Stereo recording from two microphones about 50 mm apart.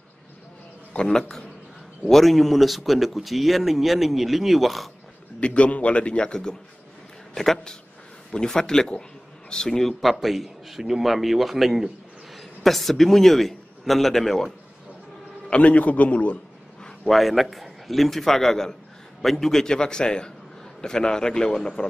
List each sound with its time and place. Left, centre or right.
0.9 s a man's voice: centre
2.0 s speech: centre
5.4 s a man's voice: left; by 14.5 s centre
15.5 s a man's voice: left
17.1 s a man's voice: centre